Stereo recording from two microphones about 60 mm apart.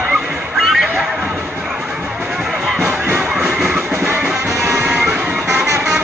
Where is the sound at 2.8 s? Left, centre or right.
Right.